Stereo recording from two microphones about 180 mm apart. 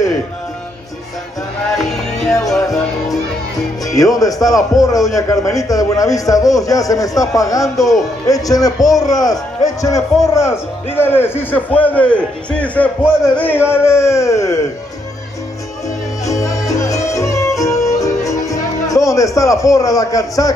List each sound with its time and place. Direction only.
1.8 s music: centre (ahead or behind)
4.1 s a man's voice: 20° left (ahead or behind)
7.7 s speech: centre (ahead or behind)
8.3 s a man's voice: 20° left (ahead or behind)
16.3 s music: 15° left (ahead or behind)